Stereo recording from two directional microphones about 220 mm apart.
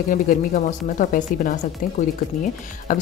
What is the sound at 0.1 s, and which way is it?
Speech, 35° left (ahead or behind).